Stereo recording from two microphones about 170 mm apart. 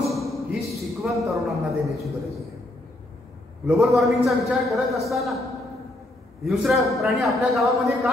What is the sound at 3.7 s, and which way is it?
A man's voice, centre (ahead or behind).